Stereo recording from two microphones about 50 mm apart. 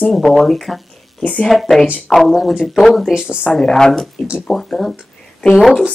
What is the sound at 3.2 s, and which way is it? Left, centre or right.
Speech, centre.